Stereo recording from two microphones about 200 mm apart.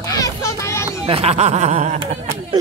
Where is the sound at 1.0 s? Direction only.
30° right (ahead or behind).